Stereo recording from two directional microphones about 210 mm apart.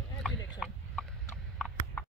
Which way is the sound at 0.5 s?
Centre (ahead or behind).